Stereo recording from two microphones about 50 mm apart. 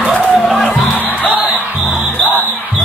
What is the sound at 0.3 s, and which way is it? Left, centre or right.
Music, centre.